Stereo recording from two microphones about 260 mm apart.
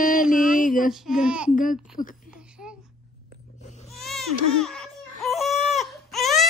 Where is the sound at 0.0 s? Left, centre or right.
Left.